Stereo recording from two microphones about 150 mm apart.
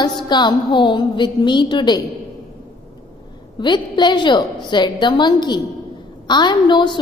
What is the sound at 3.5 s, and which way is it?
A woman's voice, 30° left (ahead or behind).